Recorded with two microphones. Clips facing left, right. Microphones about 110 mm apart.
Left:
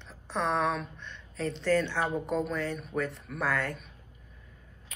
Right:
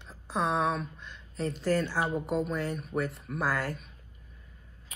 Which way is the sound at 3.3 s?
35° right (ahead or behind).